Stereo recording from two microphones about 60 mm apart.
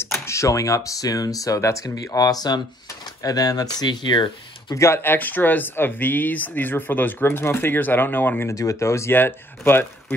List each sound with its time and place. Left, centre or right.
0.1 s speech: left
4.7 s speech: left
5.0 s speech: left
8.5 s speech: left
9.1 s speech: left